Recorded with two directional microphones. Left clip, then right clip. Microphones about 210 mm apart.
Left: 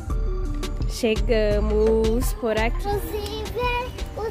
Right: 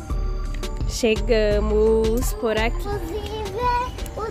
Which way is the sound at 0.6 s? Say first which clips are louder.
Right 3 dB; centre (ahead or behind).